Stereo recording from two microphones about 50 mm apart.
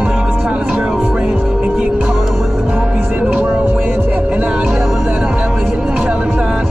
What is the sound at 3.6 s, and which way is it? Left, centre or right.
Hum, right.